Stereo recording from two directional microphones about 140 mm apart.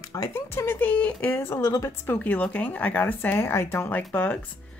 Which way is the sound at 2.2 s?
10° left (ahead or behind).